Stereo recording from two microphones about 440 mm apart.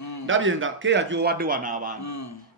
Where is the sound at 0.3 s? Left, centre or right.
Right.